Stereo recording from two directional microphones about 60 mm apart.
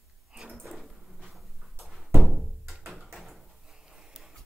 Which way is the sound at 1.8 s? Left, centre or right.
Centre.